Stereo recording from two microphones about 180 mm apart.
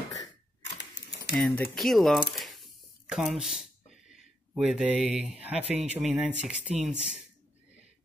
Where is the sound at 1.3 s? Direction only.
5° left (ahead or behind).